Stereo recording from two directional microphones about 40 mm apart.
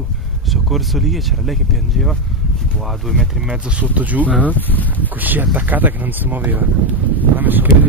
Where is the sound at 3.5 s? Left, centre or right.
Right.